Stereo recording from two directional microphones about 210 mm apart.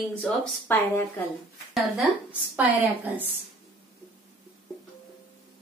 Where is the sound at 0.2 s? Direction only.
5° left (ahead or behind).